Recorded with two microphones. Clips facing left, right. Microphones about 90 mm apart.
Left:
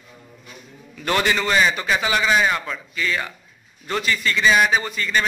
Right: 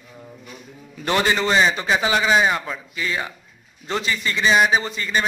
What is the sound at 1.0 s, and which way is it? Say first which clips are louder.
A man's voice: right 1 dB; 25° right (ahead or behind).